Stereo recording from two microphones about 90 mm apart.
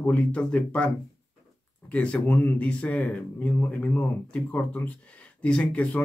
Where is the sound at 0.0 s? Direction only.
15° left (ahead or behind).